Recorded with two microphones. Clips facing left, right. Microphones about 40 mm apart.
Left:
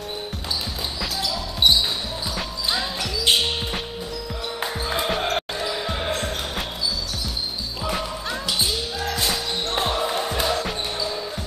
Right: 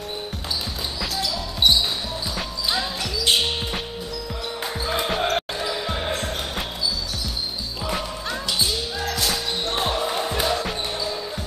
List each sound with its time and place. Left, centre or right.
2.3 s basketball bounce: centre
4.8 s basketball bounce: centre
7.8 s basketball bounce: centre